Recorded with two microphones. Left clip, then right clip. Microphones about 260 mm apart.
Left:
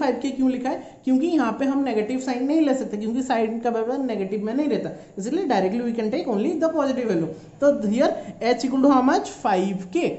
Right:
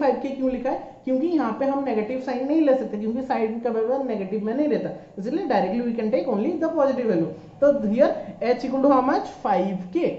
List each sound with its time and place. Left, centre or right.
0.0 s a woman's voice: left
5.2 s a woman's voice: left